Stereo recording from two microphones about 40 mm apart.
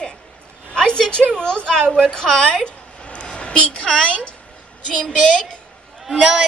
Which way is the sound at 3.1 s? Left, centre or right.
Left.